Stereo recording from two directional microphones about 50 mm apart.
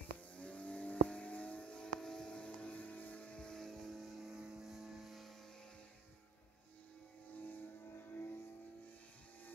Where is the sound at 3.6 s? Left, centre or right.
Centre.